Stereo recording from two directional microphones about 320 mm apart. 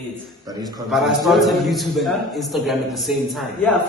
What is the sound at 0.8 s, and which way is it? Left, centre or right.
A man's voice, centre.